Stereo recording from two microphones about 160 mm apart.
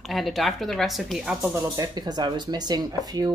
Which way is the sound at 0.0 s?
Centre (ahead or behind).